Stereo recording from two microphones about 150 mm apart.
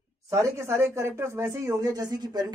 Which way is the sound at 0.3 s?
20° right (ahead or behind).